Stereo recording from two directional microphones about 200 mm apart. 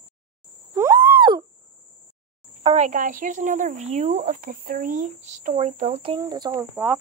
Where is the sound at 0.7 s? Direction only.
20° right (ahead or behind).